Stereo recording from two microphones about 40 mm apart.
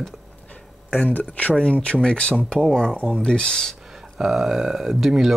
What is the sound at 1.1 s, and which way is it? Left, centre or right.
Speech, left.